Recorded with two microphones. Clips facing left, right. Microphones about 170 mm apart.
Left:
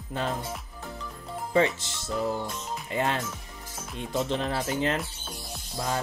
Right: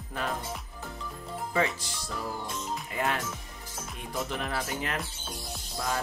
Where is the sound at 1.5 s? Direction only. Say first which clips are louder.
Left 6 dB; 25° left (ahead or behind).